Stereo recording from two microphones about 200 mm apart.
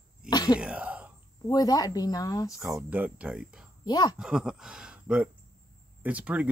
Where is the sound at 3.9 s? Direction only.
20° left (ahead or behind).